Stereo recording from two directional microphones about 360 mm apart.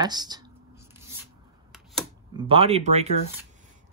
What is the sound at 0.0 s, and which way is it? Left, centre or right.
Speech, centre.